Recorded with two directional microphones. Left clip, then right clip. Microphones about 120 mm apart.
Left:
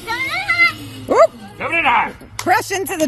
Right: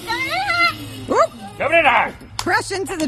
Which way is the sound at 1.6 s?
55° right (ahead or behind).